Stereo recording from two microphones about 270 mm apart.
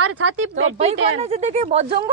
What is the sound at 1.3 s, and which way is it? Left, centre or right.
Speech, right.